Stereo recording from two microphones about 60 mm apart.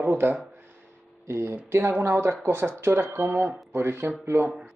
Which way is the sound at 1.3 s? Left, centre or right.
Right.